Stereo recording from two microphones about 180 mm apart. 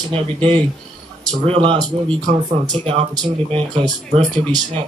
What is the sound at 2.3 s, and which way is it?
Speech, 40° right (ahead or behind).